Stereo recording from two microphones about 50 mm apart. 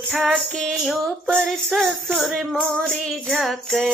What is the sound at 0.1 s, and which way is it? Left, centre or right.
Music, centre.